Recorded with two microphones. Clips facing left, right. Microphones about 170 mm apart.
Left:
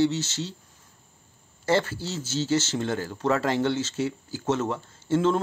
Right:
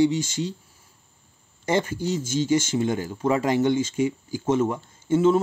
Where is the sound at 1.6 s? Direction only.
15° right (ahead or behind).